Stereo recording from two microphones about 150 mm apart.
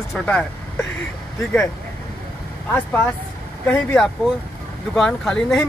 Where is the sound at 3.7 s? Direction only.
5° left (ahead or behind).